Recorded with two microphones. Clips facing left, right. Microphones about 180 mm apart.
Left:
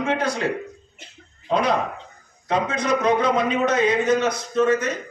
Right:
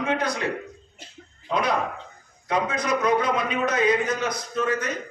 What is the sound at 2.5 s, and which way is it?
A man's voice, 30° left (ahead or behind).